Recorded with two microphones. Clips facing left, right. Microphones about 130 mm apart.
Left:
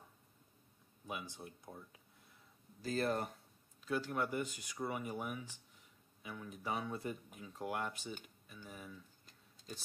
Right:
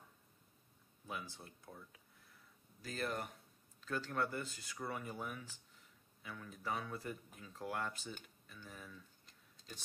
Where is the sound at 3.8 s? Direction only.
10° left (ahead or behind).